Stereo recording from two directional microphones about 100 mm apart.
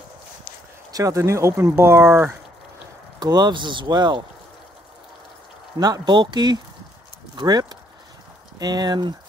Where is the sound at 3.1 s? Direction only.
45° right (ahead or behind).